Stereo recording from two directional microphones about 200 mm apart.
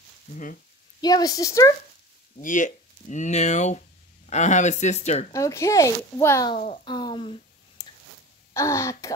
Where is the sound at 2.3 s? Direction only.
40° left (ahead or behind).